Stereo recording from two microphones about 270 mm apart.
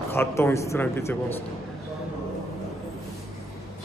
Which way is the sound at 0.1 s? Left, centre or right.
Centre.